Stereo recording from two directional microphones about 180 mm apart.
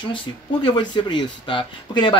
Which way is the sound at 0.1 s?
25° left (ahead or behind).